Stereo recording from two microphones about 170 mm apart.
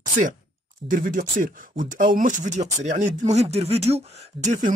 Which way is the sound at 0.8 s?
55° right (ahead or behind).